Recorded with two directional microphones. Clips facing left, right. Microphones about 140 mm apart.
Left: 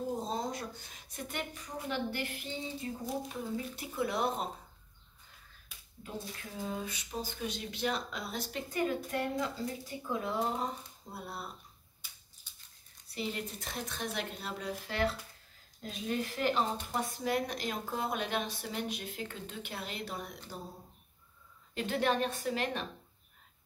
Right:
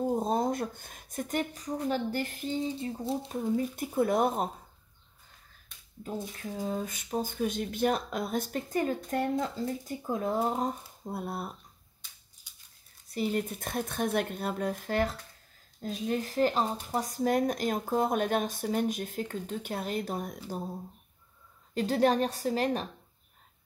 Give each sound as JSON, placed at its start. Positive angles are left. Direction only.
{"t": 0.1, "sound": "speech", "side_deg": -55}
{"t": 2.8, "sound": "speech", "side_deg": -30}
{"t": 3.7, "sound": "speech", "side_deg": -50}
{"t": 5.7, "sound": "finger snapping", "side_deg": 5}
{"t": 6.0, "sound": "speech", "side_deg": -40}
{"t": 12.0, "sound": "a sound", "side_deg": 5}
{"t": 12.5, "sound": "scissors", "side_deg": -10}
{"t": 13.1, "sound": "speech", "side_deg": -45}
{"t": 21.7, "sound": "a woman's voice", "side_deg": -40}